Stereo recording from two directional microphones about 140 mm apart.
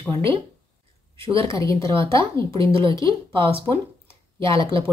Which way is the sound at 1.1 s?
40° right (ahead or behind).